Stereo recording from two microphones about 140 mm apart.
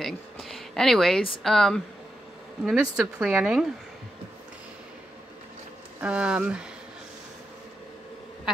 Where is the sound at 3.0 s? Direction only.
10° right (ahead or behind).